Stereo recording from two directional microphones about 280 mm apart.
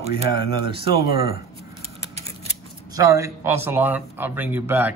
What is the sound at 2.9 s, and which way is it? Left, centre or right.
Speech, centre.